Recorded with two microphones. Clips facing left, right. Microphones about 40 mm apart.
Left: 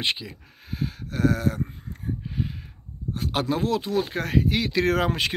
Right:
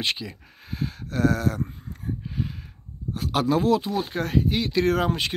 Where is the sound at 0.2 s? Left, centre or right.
Centre.